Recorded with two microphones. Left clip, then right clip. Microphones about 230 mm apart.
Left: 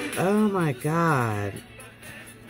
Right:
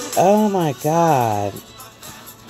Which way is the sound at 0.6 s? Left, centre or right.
Right.